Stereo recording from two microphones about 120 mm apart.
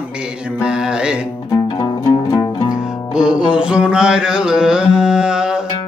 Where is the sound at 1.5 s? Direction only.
35° left (ahead or behind).